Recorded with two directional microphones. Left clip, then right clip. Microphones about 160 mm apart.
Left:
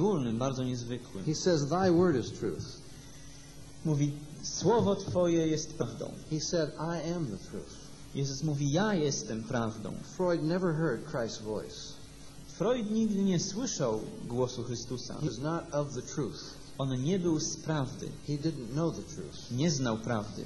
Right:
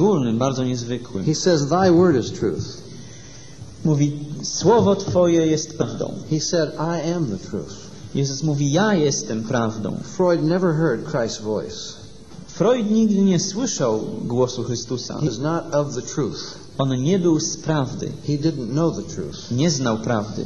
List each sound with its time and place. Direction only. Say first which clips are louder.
0.0 s speech: right 12 dB; 30° right (ahead or behind)
3.8 s speech: right 12 dB; 30° right (ahead or behind)
8.2 s a man's voice: right 12 dB; 30° right (ahead or behind)